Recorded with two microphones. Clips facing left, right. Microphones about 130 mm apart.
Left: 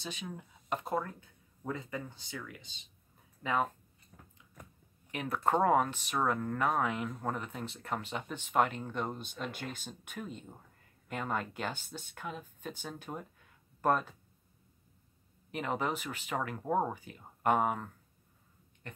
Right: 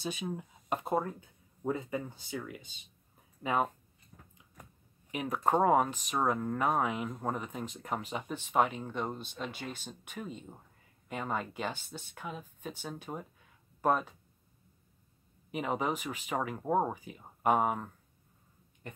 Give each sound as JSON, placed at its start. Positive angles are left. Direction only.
{"t": 0.3, "sound": "speech", "side_deg": -20}
{"t": 5.1, "sound": "speech", "side_deg": -10}
{"t": 15.5, "sound": "speech", "side_deg": -5}